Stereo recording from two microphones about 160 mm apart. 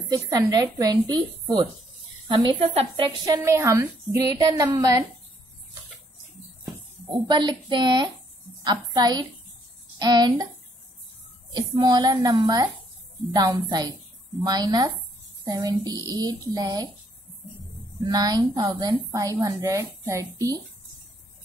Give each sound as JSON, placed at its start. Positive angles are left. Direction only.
{"t": 0.1, "sound": "a woman's voice", "side_deg": -25}
{"t": 3.3, "sound": "a woman's voice", "side_deg": -15}
{"t": 7.2, "sound": "a woman's voice", "side_deg": -30}
{"t": 11.5, "sound": "a woman's voice", "side_deg": -25}
{"t": 18.0, "sound": "a woman's voice", "side_deg": -25}